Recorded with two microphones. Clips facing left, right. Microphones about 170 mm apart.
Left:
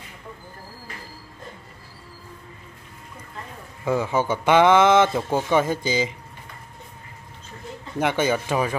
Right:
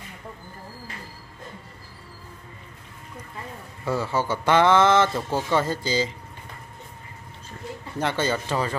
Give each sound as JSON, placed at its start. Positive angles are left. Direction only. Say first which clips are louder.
{"t": 3.8, "sound": "speech", "louder": "left 3 dB", "side_deg": 15}
{"t": 8.0, "sound": "speech", "louder": "left 3 dB", "side_deg": 15}